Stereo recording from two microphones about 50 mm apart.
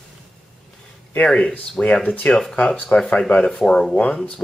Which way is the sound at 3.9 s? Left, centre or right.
Left.